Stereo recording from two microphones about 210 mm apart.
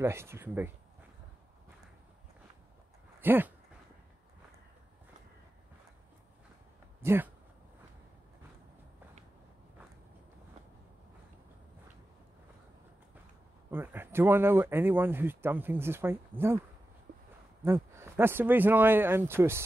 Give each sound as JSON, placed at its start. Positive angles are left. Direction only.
{"t": 0.0, "sound": "speech", "side_deg": -10}
{"t": 3.2, "sound": "speech", "side_deg": -10}
{"t": 7.0, "sound": "speech", "side_deg": -10}
{"t": 13.7, "sound": "speech", "side_deg": -10}
{"t": 17.1, "sound": "a sound", "side_deg": -45}
{"t": 17.6, "sound": "speech", "side_deg": -10}